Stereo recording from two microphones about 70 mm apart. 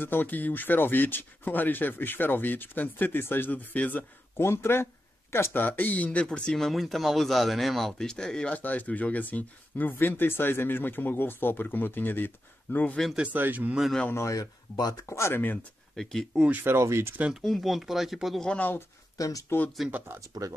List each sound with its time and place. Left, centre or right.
0.0 s speech: left
4.4 s speech: left; by 8.5 s centre
8.5 s speech: left
13.1 s speech: centre
14.2 s speech: left
15.0 s speech: left
16.0 s speech: centre
16.6 s speech: right
17.3 s speech: centre
18.5 s speech: left
19.1 s speech: left
19.8 s speech: centre
20.2 s speech: right